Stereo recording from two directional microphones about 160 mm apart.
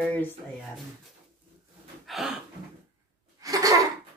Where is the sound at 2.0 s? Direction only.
Centre (ahead or behind).